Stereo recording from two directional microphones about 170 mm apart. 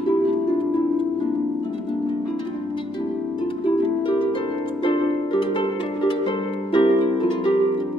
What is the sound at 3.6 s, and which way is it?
Harp, 30° left (ahead or behind).